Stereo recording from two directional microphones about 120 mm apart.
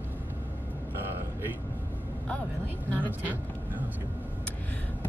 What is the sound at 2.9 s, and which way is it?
Speech, 15° right (ahead or behind).